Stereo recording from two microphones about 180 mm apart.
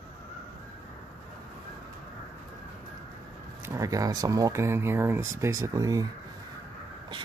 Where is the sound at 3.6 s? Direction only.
20° right (ahead or behind).